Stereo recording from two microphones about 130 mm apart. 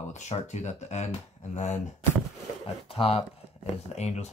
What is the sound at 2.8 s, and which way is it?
Speech, 45° left (ahead or behind).